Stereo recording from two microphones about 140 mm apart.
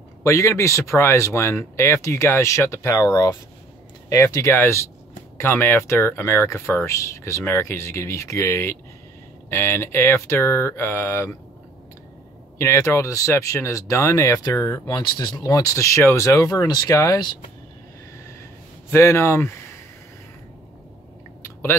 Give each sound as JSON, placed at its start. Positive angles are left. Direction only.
{"t": 0.2, "sound": "speech", "side_deg": 20}
{"t": 12.5, "sound": "speech", "side_deg": 20}
{"t": 18.9, "sound": "speech", "side_deg": 15}